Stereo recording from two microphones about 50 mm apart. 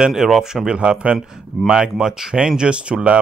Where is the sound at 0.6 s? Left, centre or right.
Right.